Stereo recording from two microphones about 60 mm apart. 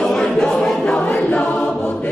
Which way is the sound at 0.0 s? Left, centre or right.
Centre.